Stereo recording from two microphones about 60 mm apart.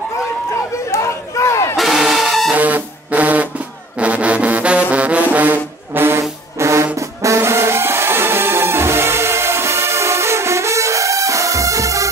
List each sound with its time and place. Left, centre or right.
0.9 s a sound: left
1.8 s crowd: centre
2.5 s a sound: right
4.0 s music: right
6.6 s brass instrument: right
7.3 s music: right